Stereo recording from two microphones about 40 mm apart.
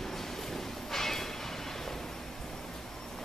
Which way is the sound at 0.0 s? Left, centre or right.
Centre.